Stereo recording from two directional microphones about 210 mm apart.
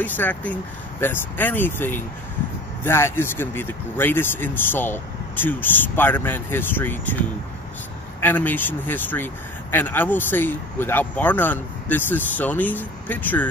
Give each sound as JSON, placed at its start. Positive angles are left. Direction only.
{"t": 0.0, "sound": "speech", "side_deg": 10}